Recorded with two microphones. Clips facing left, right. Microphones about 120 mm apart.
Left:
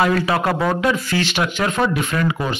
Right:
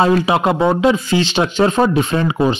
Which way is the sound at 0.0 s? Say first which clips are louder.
Right 4 dB; 25° right (ahead or behind).